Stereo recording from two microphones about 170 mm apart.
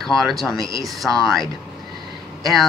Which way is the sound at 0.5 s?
20° right (ahead or behind).